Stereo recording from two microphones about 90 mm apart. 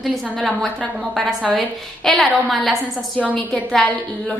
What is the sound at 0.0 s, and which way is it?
A woman's voice, centre (ahead or behind).